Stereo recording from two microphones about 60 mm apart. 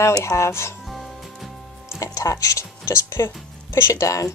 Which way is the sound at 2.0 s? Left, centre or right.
Left.